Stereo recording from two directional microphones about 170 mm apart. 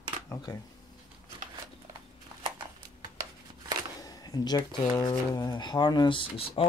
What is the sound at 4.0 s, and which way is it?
Speech, 20° left (ahead or behind).